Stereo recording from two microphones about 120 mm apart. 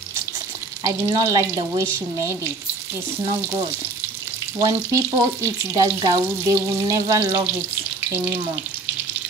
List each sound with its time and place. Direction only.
0.8 s speech: 30° right (ahead or behind)
4.6 s frying: 25° right (ahead or behind)